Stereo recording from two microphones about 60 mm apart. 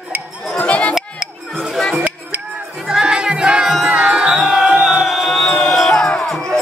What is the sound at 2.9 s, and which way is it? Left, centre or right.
Music, centre.